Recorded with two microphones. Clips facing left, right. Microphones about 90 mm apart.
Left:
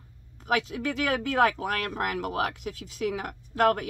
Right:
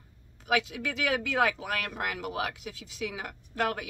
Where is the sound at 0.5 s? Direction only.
40° left (ahead or behind).